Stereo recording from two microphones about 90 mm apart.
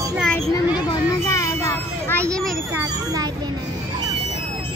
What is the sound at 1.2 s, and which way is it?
Music, 35° left (ahead or behind).